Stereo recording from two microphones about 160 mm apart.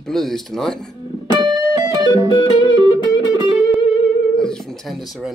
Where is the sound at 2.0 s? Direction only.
30° left (ahead or behind).